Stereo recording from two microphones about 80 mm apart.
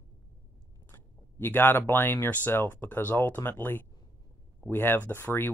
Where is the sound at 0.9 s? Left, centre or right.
Left.